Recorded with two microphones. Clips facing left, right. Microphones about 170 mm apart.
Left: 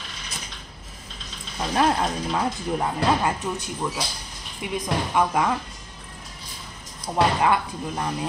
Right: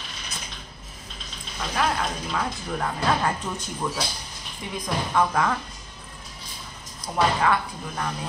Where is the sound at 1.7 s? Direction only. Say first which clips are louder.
Left 4 dB; 30° left (ahead or behind).